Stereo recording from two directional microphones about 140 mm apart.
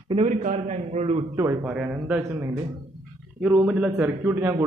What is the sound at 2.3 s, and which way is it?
Speech, 25° right (ahead or behind).